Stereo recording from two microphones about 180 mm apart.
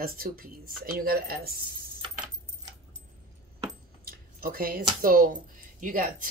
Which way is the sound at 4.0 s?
55° right (ahead or behind).